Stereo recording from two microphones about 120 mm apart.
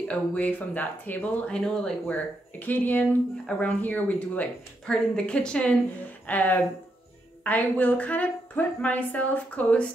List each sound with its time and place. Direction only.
0.1 s speech: 10° left (ahead or behind)